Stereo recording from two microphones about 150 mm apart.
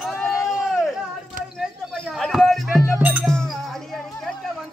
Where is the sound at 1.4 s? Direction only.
65° right (ahead or behind).